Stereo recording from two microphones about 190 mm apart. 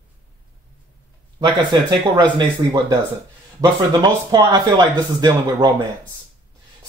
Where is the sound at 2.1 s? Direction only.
20° right (ahead or behind).